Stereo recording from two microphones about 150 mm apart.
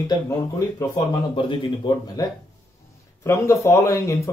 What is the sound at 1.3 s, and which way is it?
Speech, 30° left (ahead or behind).